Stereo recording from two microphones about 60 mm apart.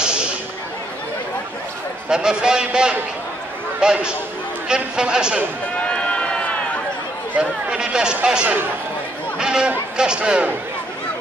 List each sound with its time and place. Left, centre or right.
0.0 s a sound: centre
2.0 s speech: centre
5.8 s run: centre
7.3 s speech: centre